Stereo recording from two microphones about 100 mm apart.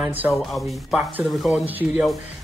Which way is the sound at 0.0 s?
15° right (ahead or behind).